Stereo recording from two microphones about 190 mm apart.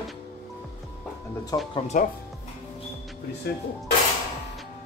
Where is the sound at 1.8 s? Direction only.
40° left (ahead or behind).